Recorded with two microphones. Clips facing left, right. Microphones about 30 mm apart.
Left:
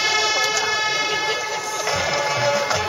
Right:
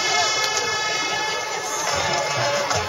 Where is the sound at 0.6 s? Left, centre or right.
Centre.